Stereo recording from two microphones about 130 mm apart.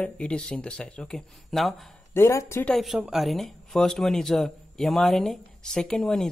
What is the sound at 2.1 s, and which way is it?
Speech, 20° left (ahead or behind).